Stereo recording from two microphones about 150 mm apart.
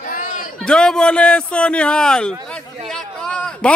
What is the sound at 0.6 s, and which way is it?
A man's voice, 5° left (ahead or behind).